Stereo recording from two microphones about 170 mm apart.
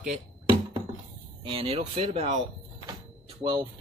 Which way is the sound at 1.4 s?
30° right (ahead or behind).